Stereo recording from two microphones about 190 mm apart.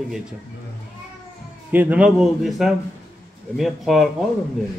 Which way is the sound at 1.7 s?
10° right (ahead or behind).